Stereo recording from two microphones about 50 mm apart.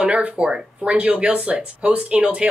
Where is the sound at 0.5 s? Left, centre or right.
Centre.